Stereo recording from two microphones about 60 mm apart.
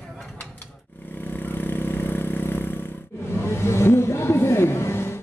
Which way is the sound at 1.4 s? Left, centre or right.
Left.